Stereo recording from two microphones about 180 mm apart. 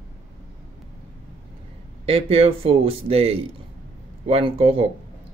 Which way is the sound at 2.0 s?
35° right (ahead or behind).